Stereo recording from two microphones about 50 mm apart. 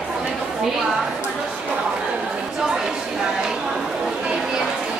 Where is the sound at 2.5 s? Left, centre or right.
Centre.